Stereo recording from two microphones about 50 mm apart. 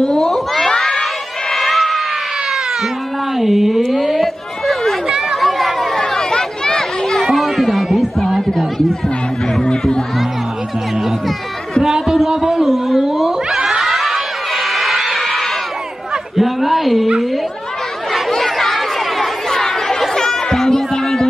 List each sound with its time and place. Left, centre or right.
0.0 s crowd: centre
1.5 s cat: centre
3.3 s a sound: centre
5.0 s chatter: centre
5.9 s a sound: centre
7.2 s chatter: centre
9.7 s speech: centre
11.8 s cat: centre
15.1 s a sound: centre
18.1 s chatter: centre